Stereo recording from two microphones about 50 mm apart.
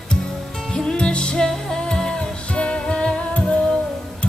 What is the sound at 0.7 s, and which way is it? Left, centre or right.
Music, centre.